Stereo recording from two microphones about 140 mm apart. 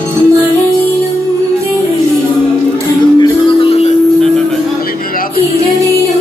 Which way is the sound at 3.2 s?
40° left (ahead or behind).